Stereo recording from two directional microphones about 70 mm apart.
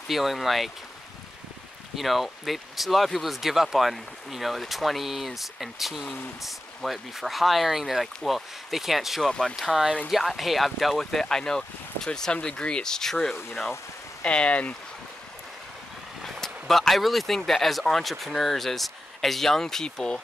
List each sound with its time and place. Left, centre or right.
0.1 s speech: centre
2.0 s speech: centre
9.3 s speech: centre
10.0 s speech: centre
16.2 s speech: centre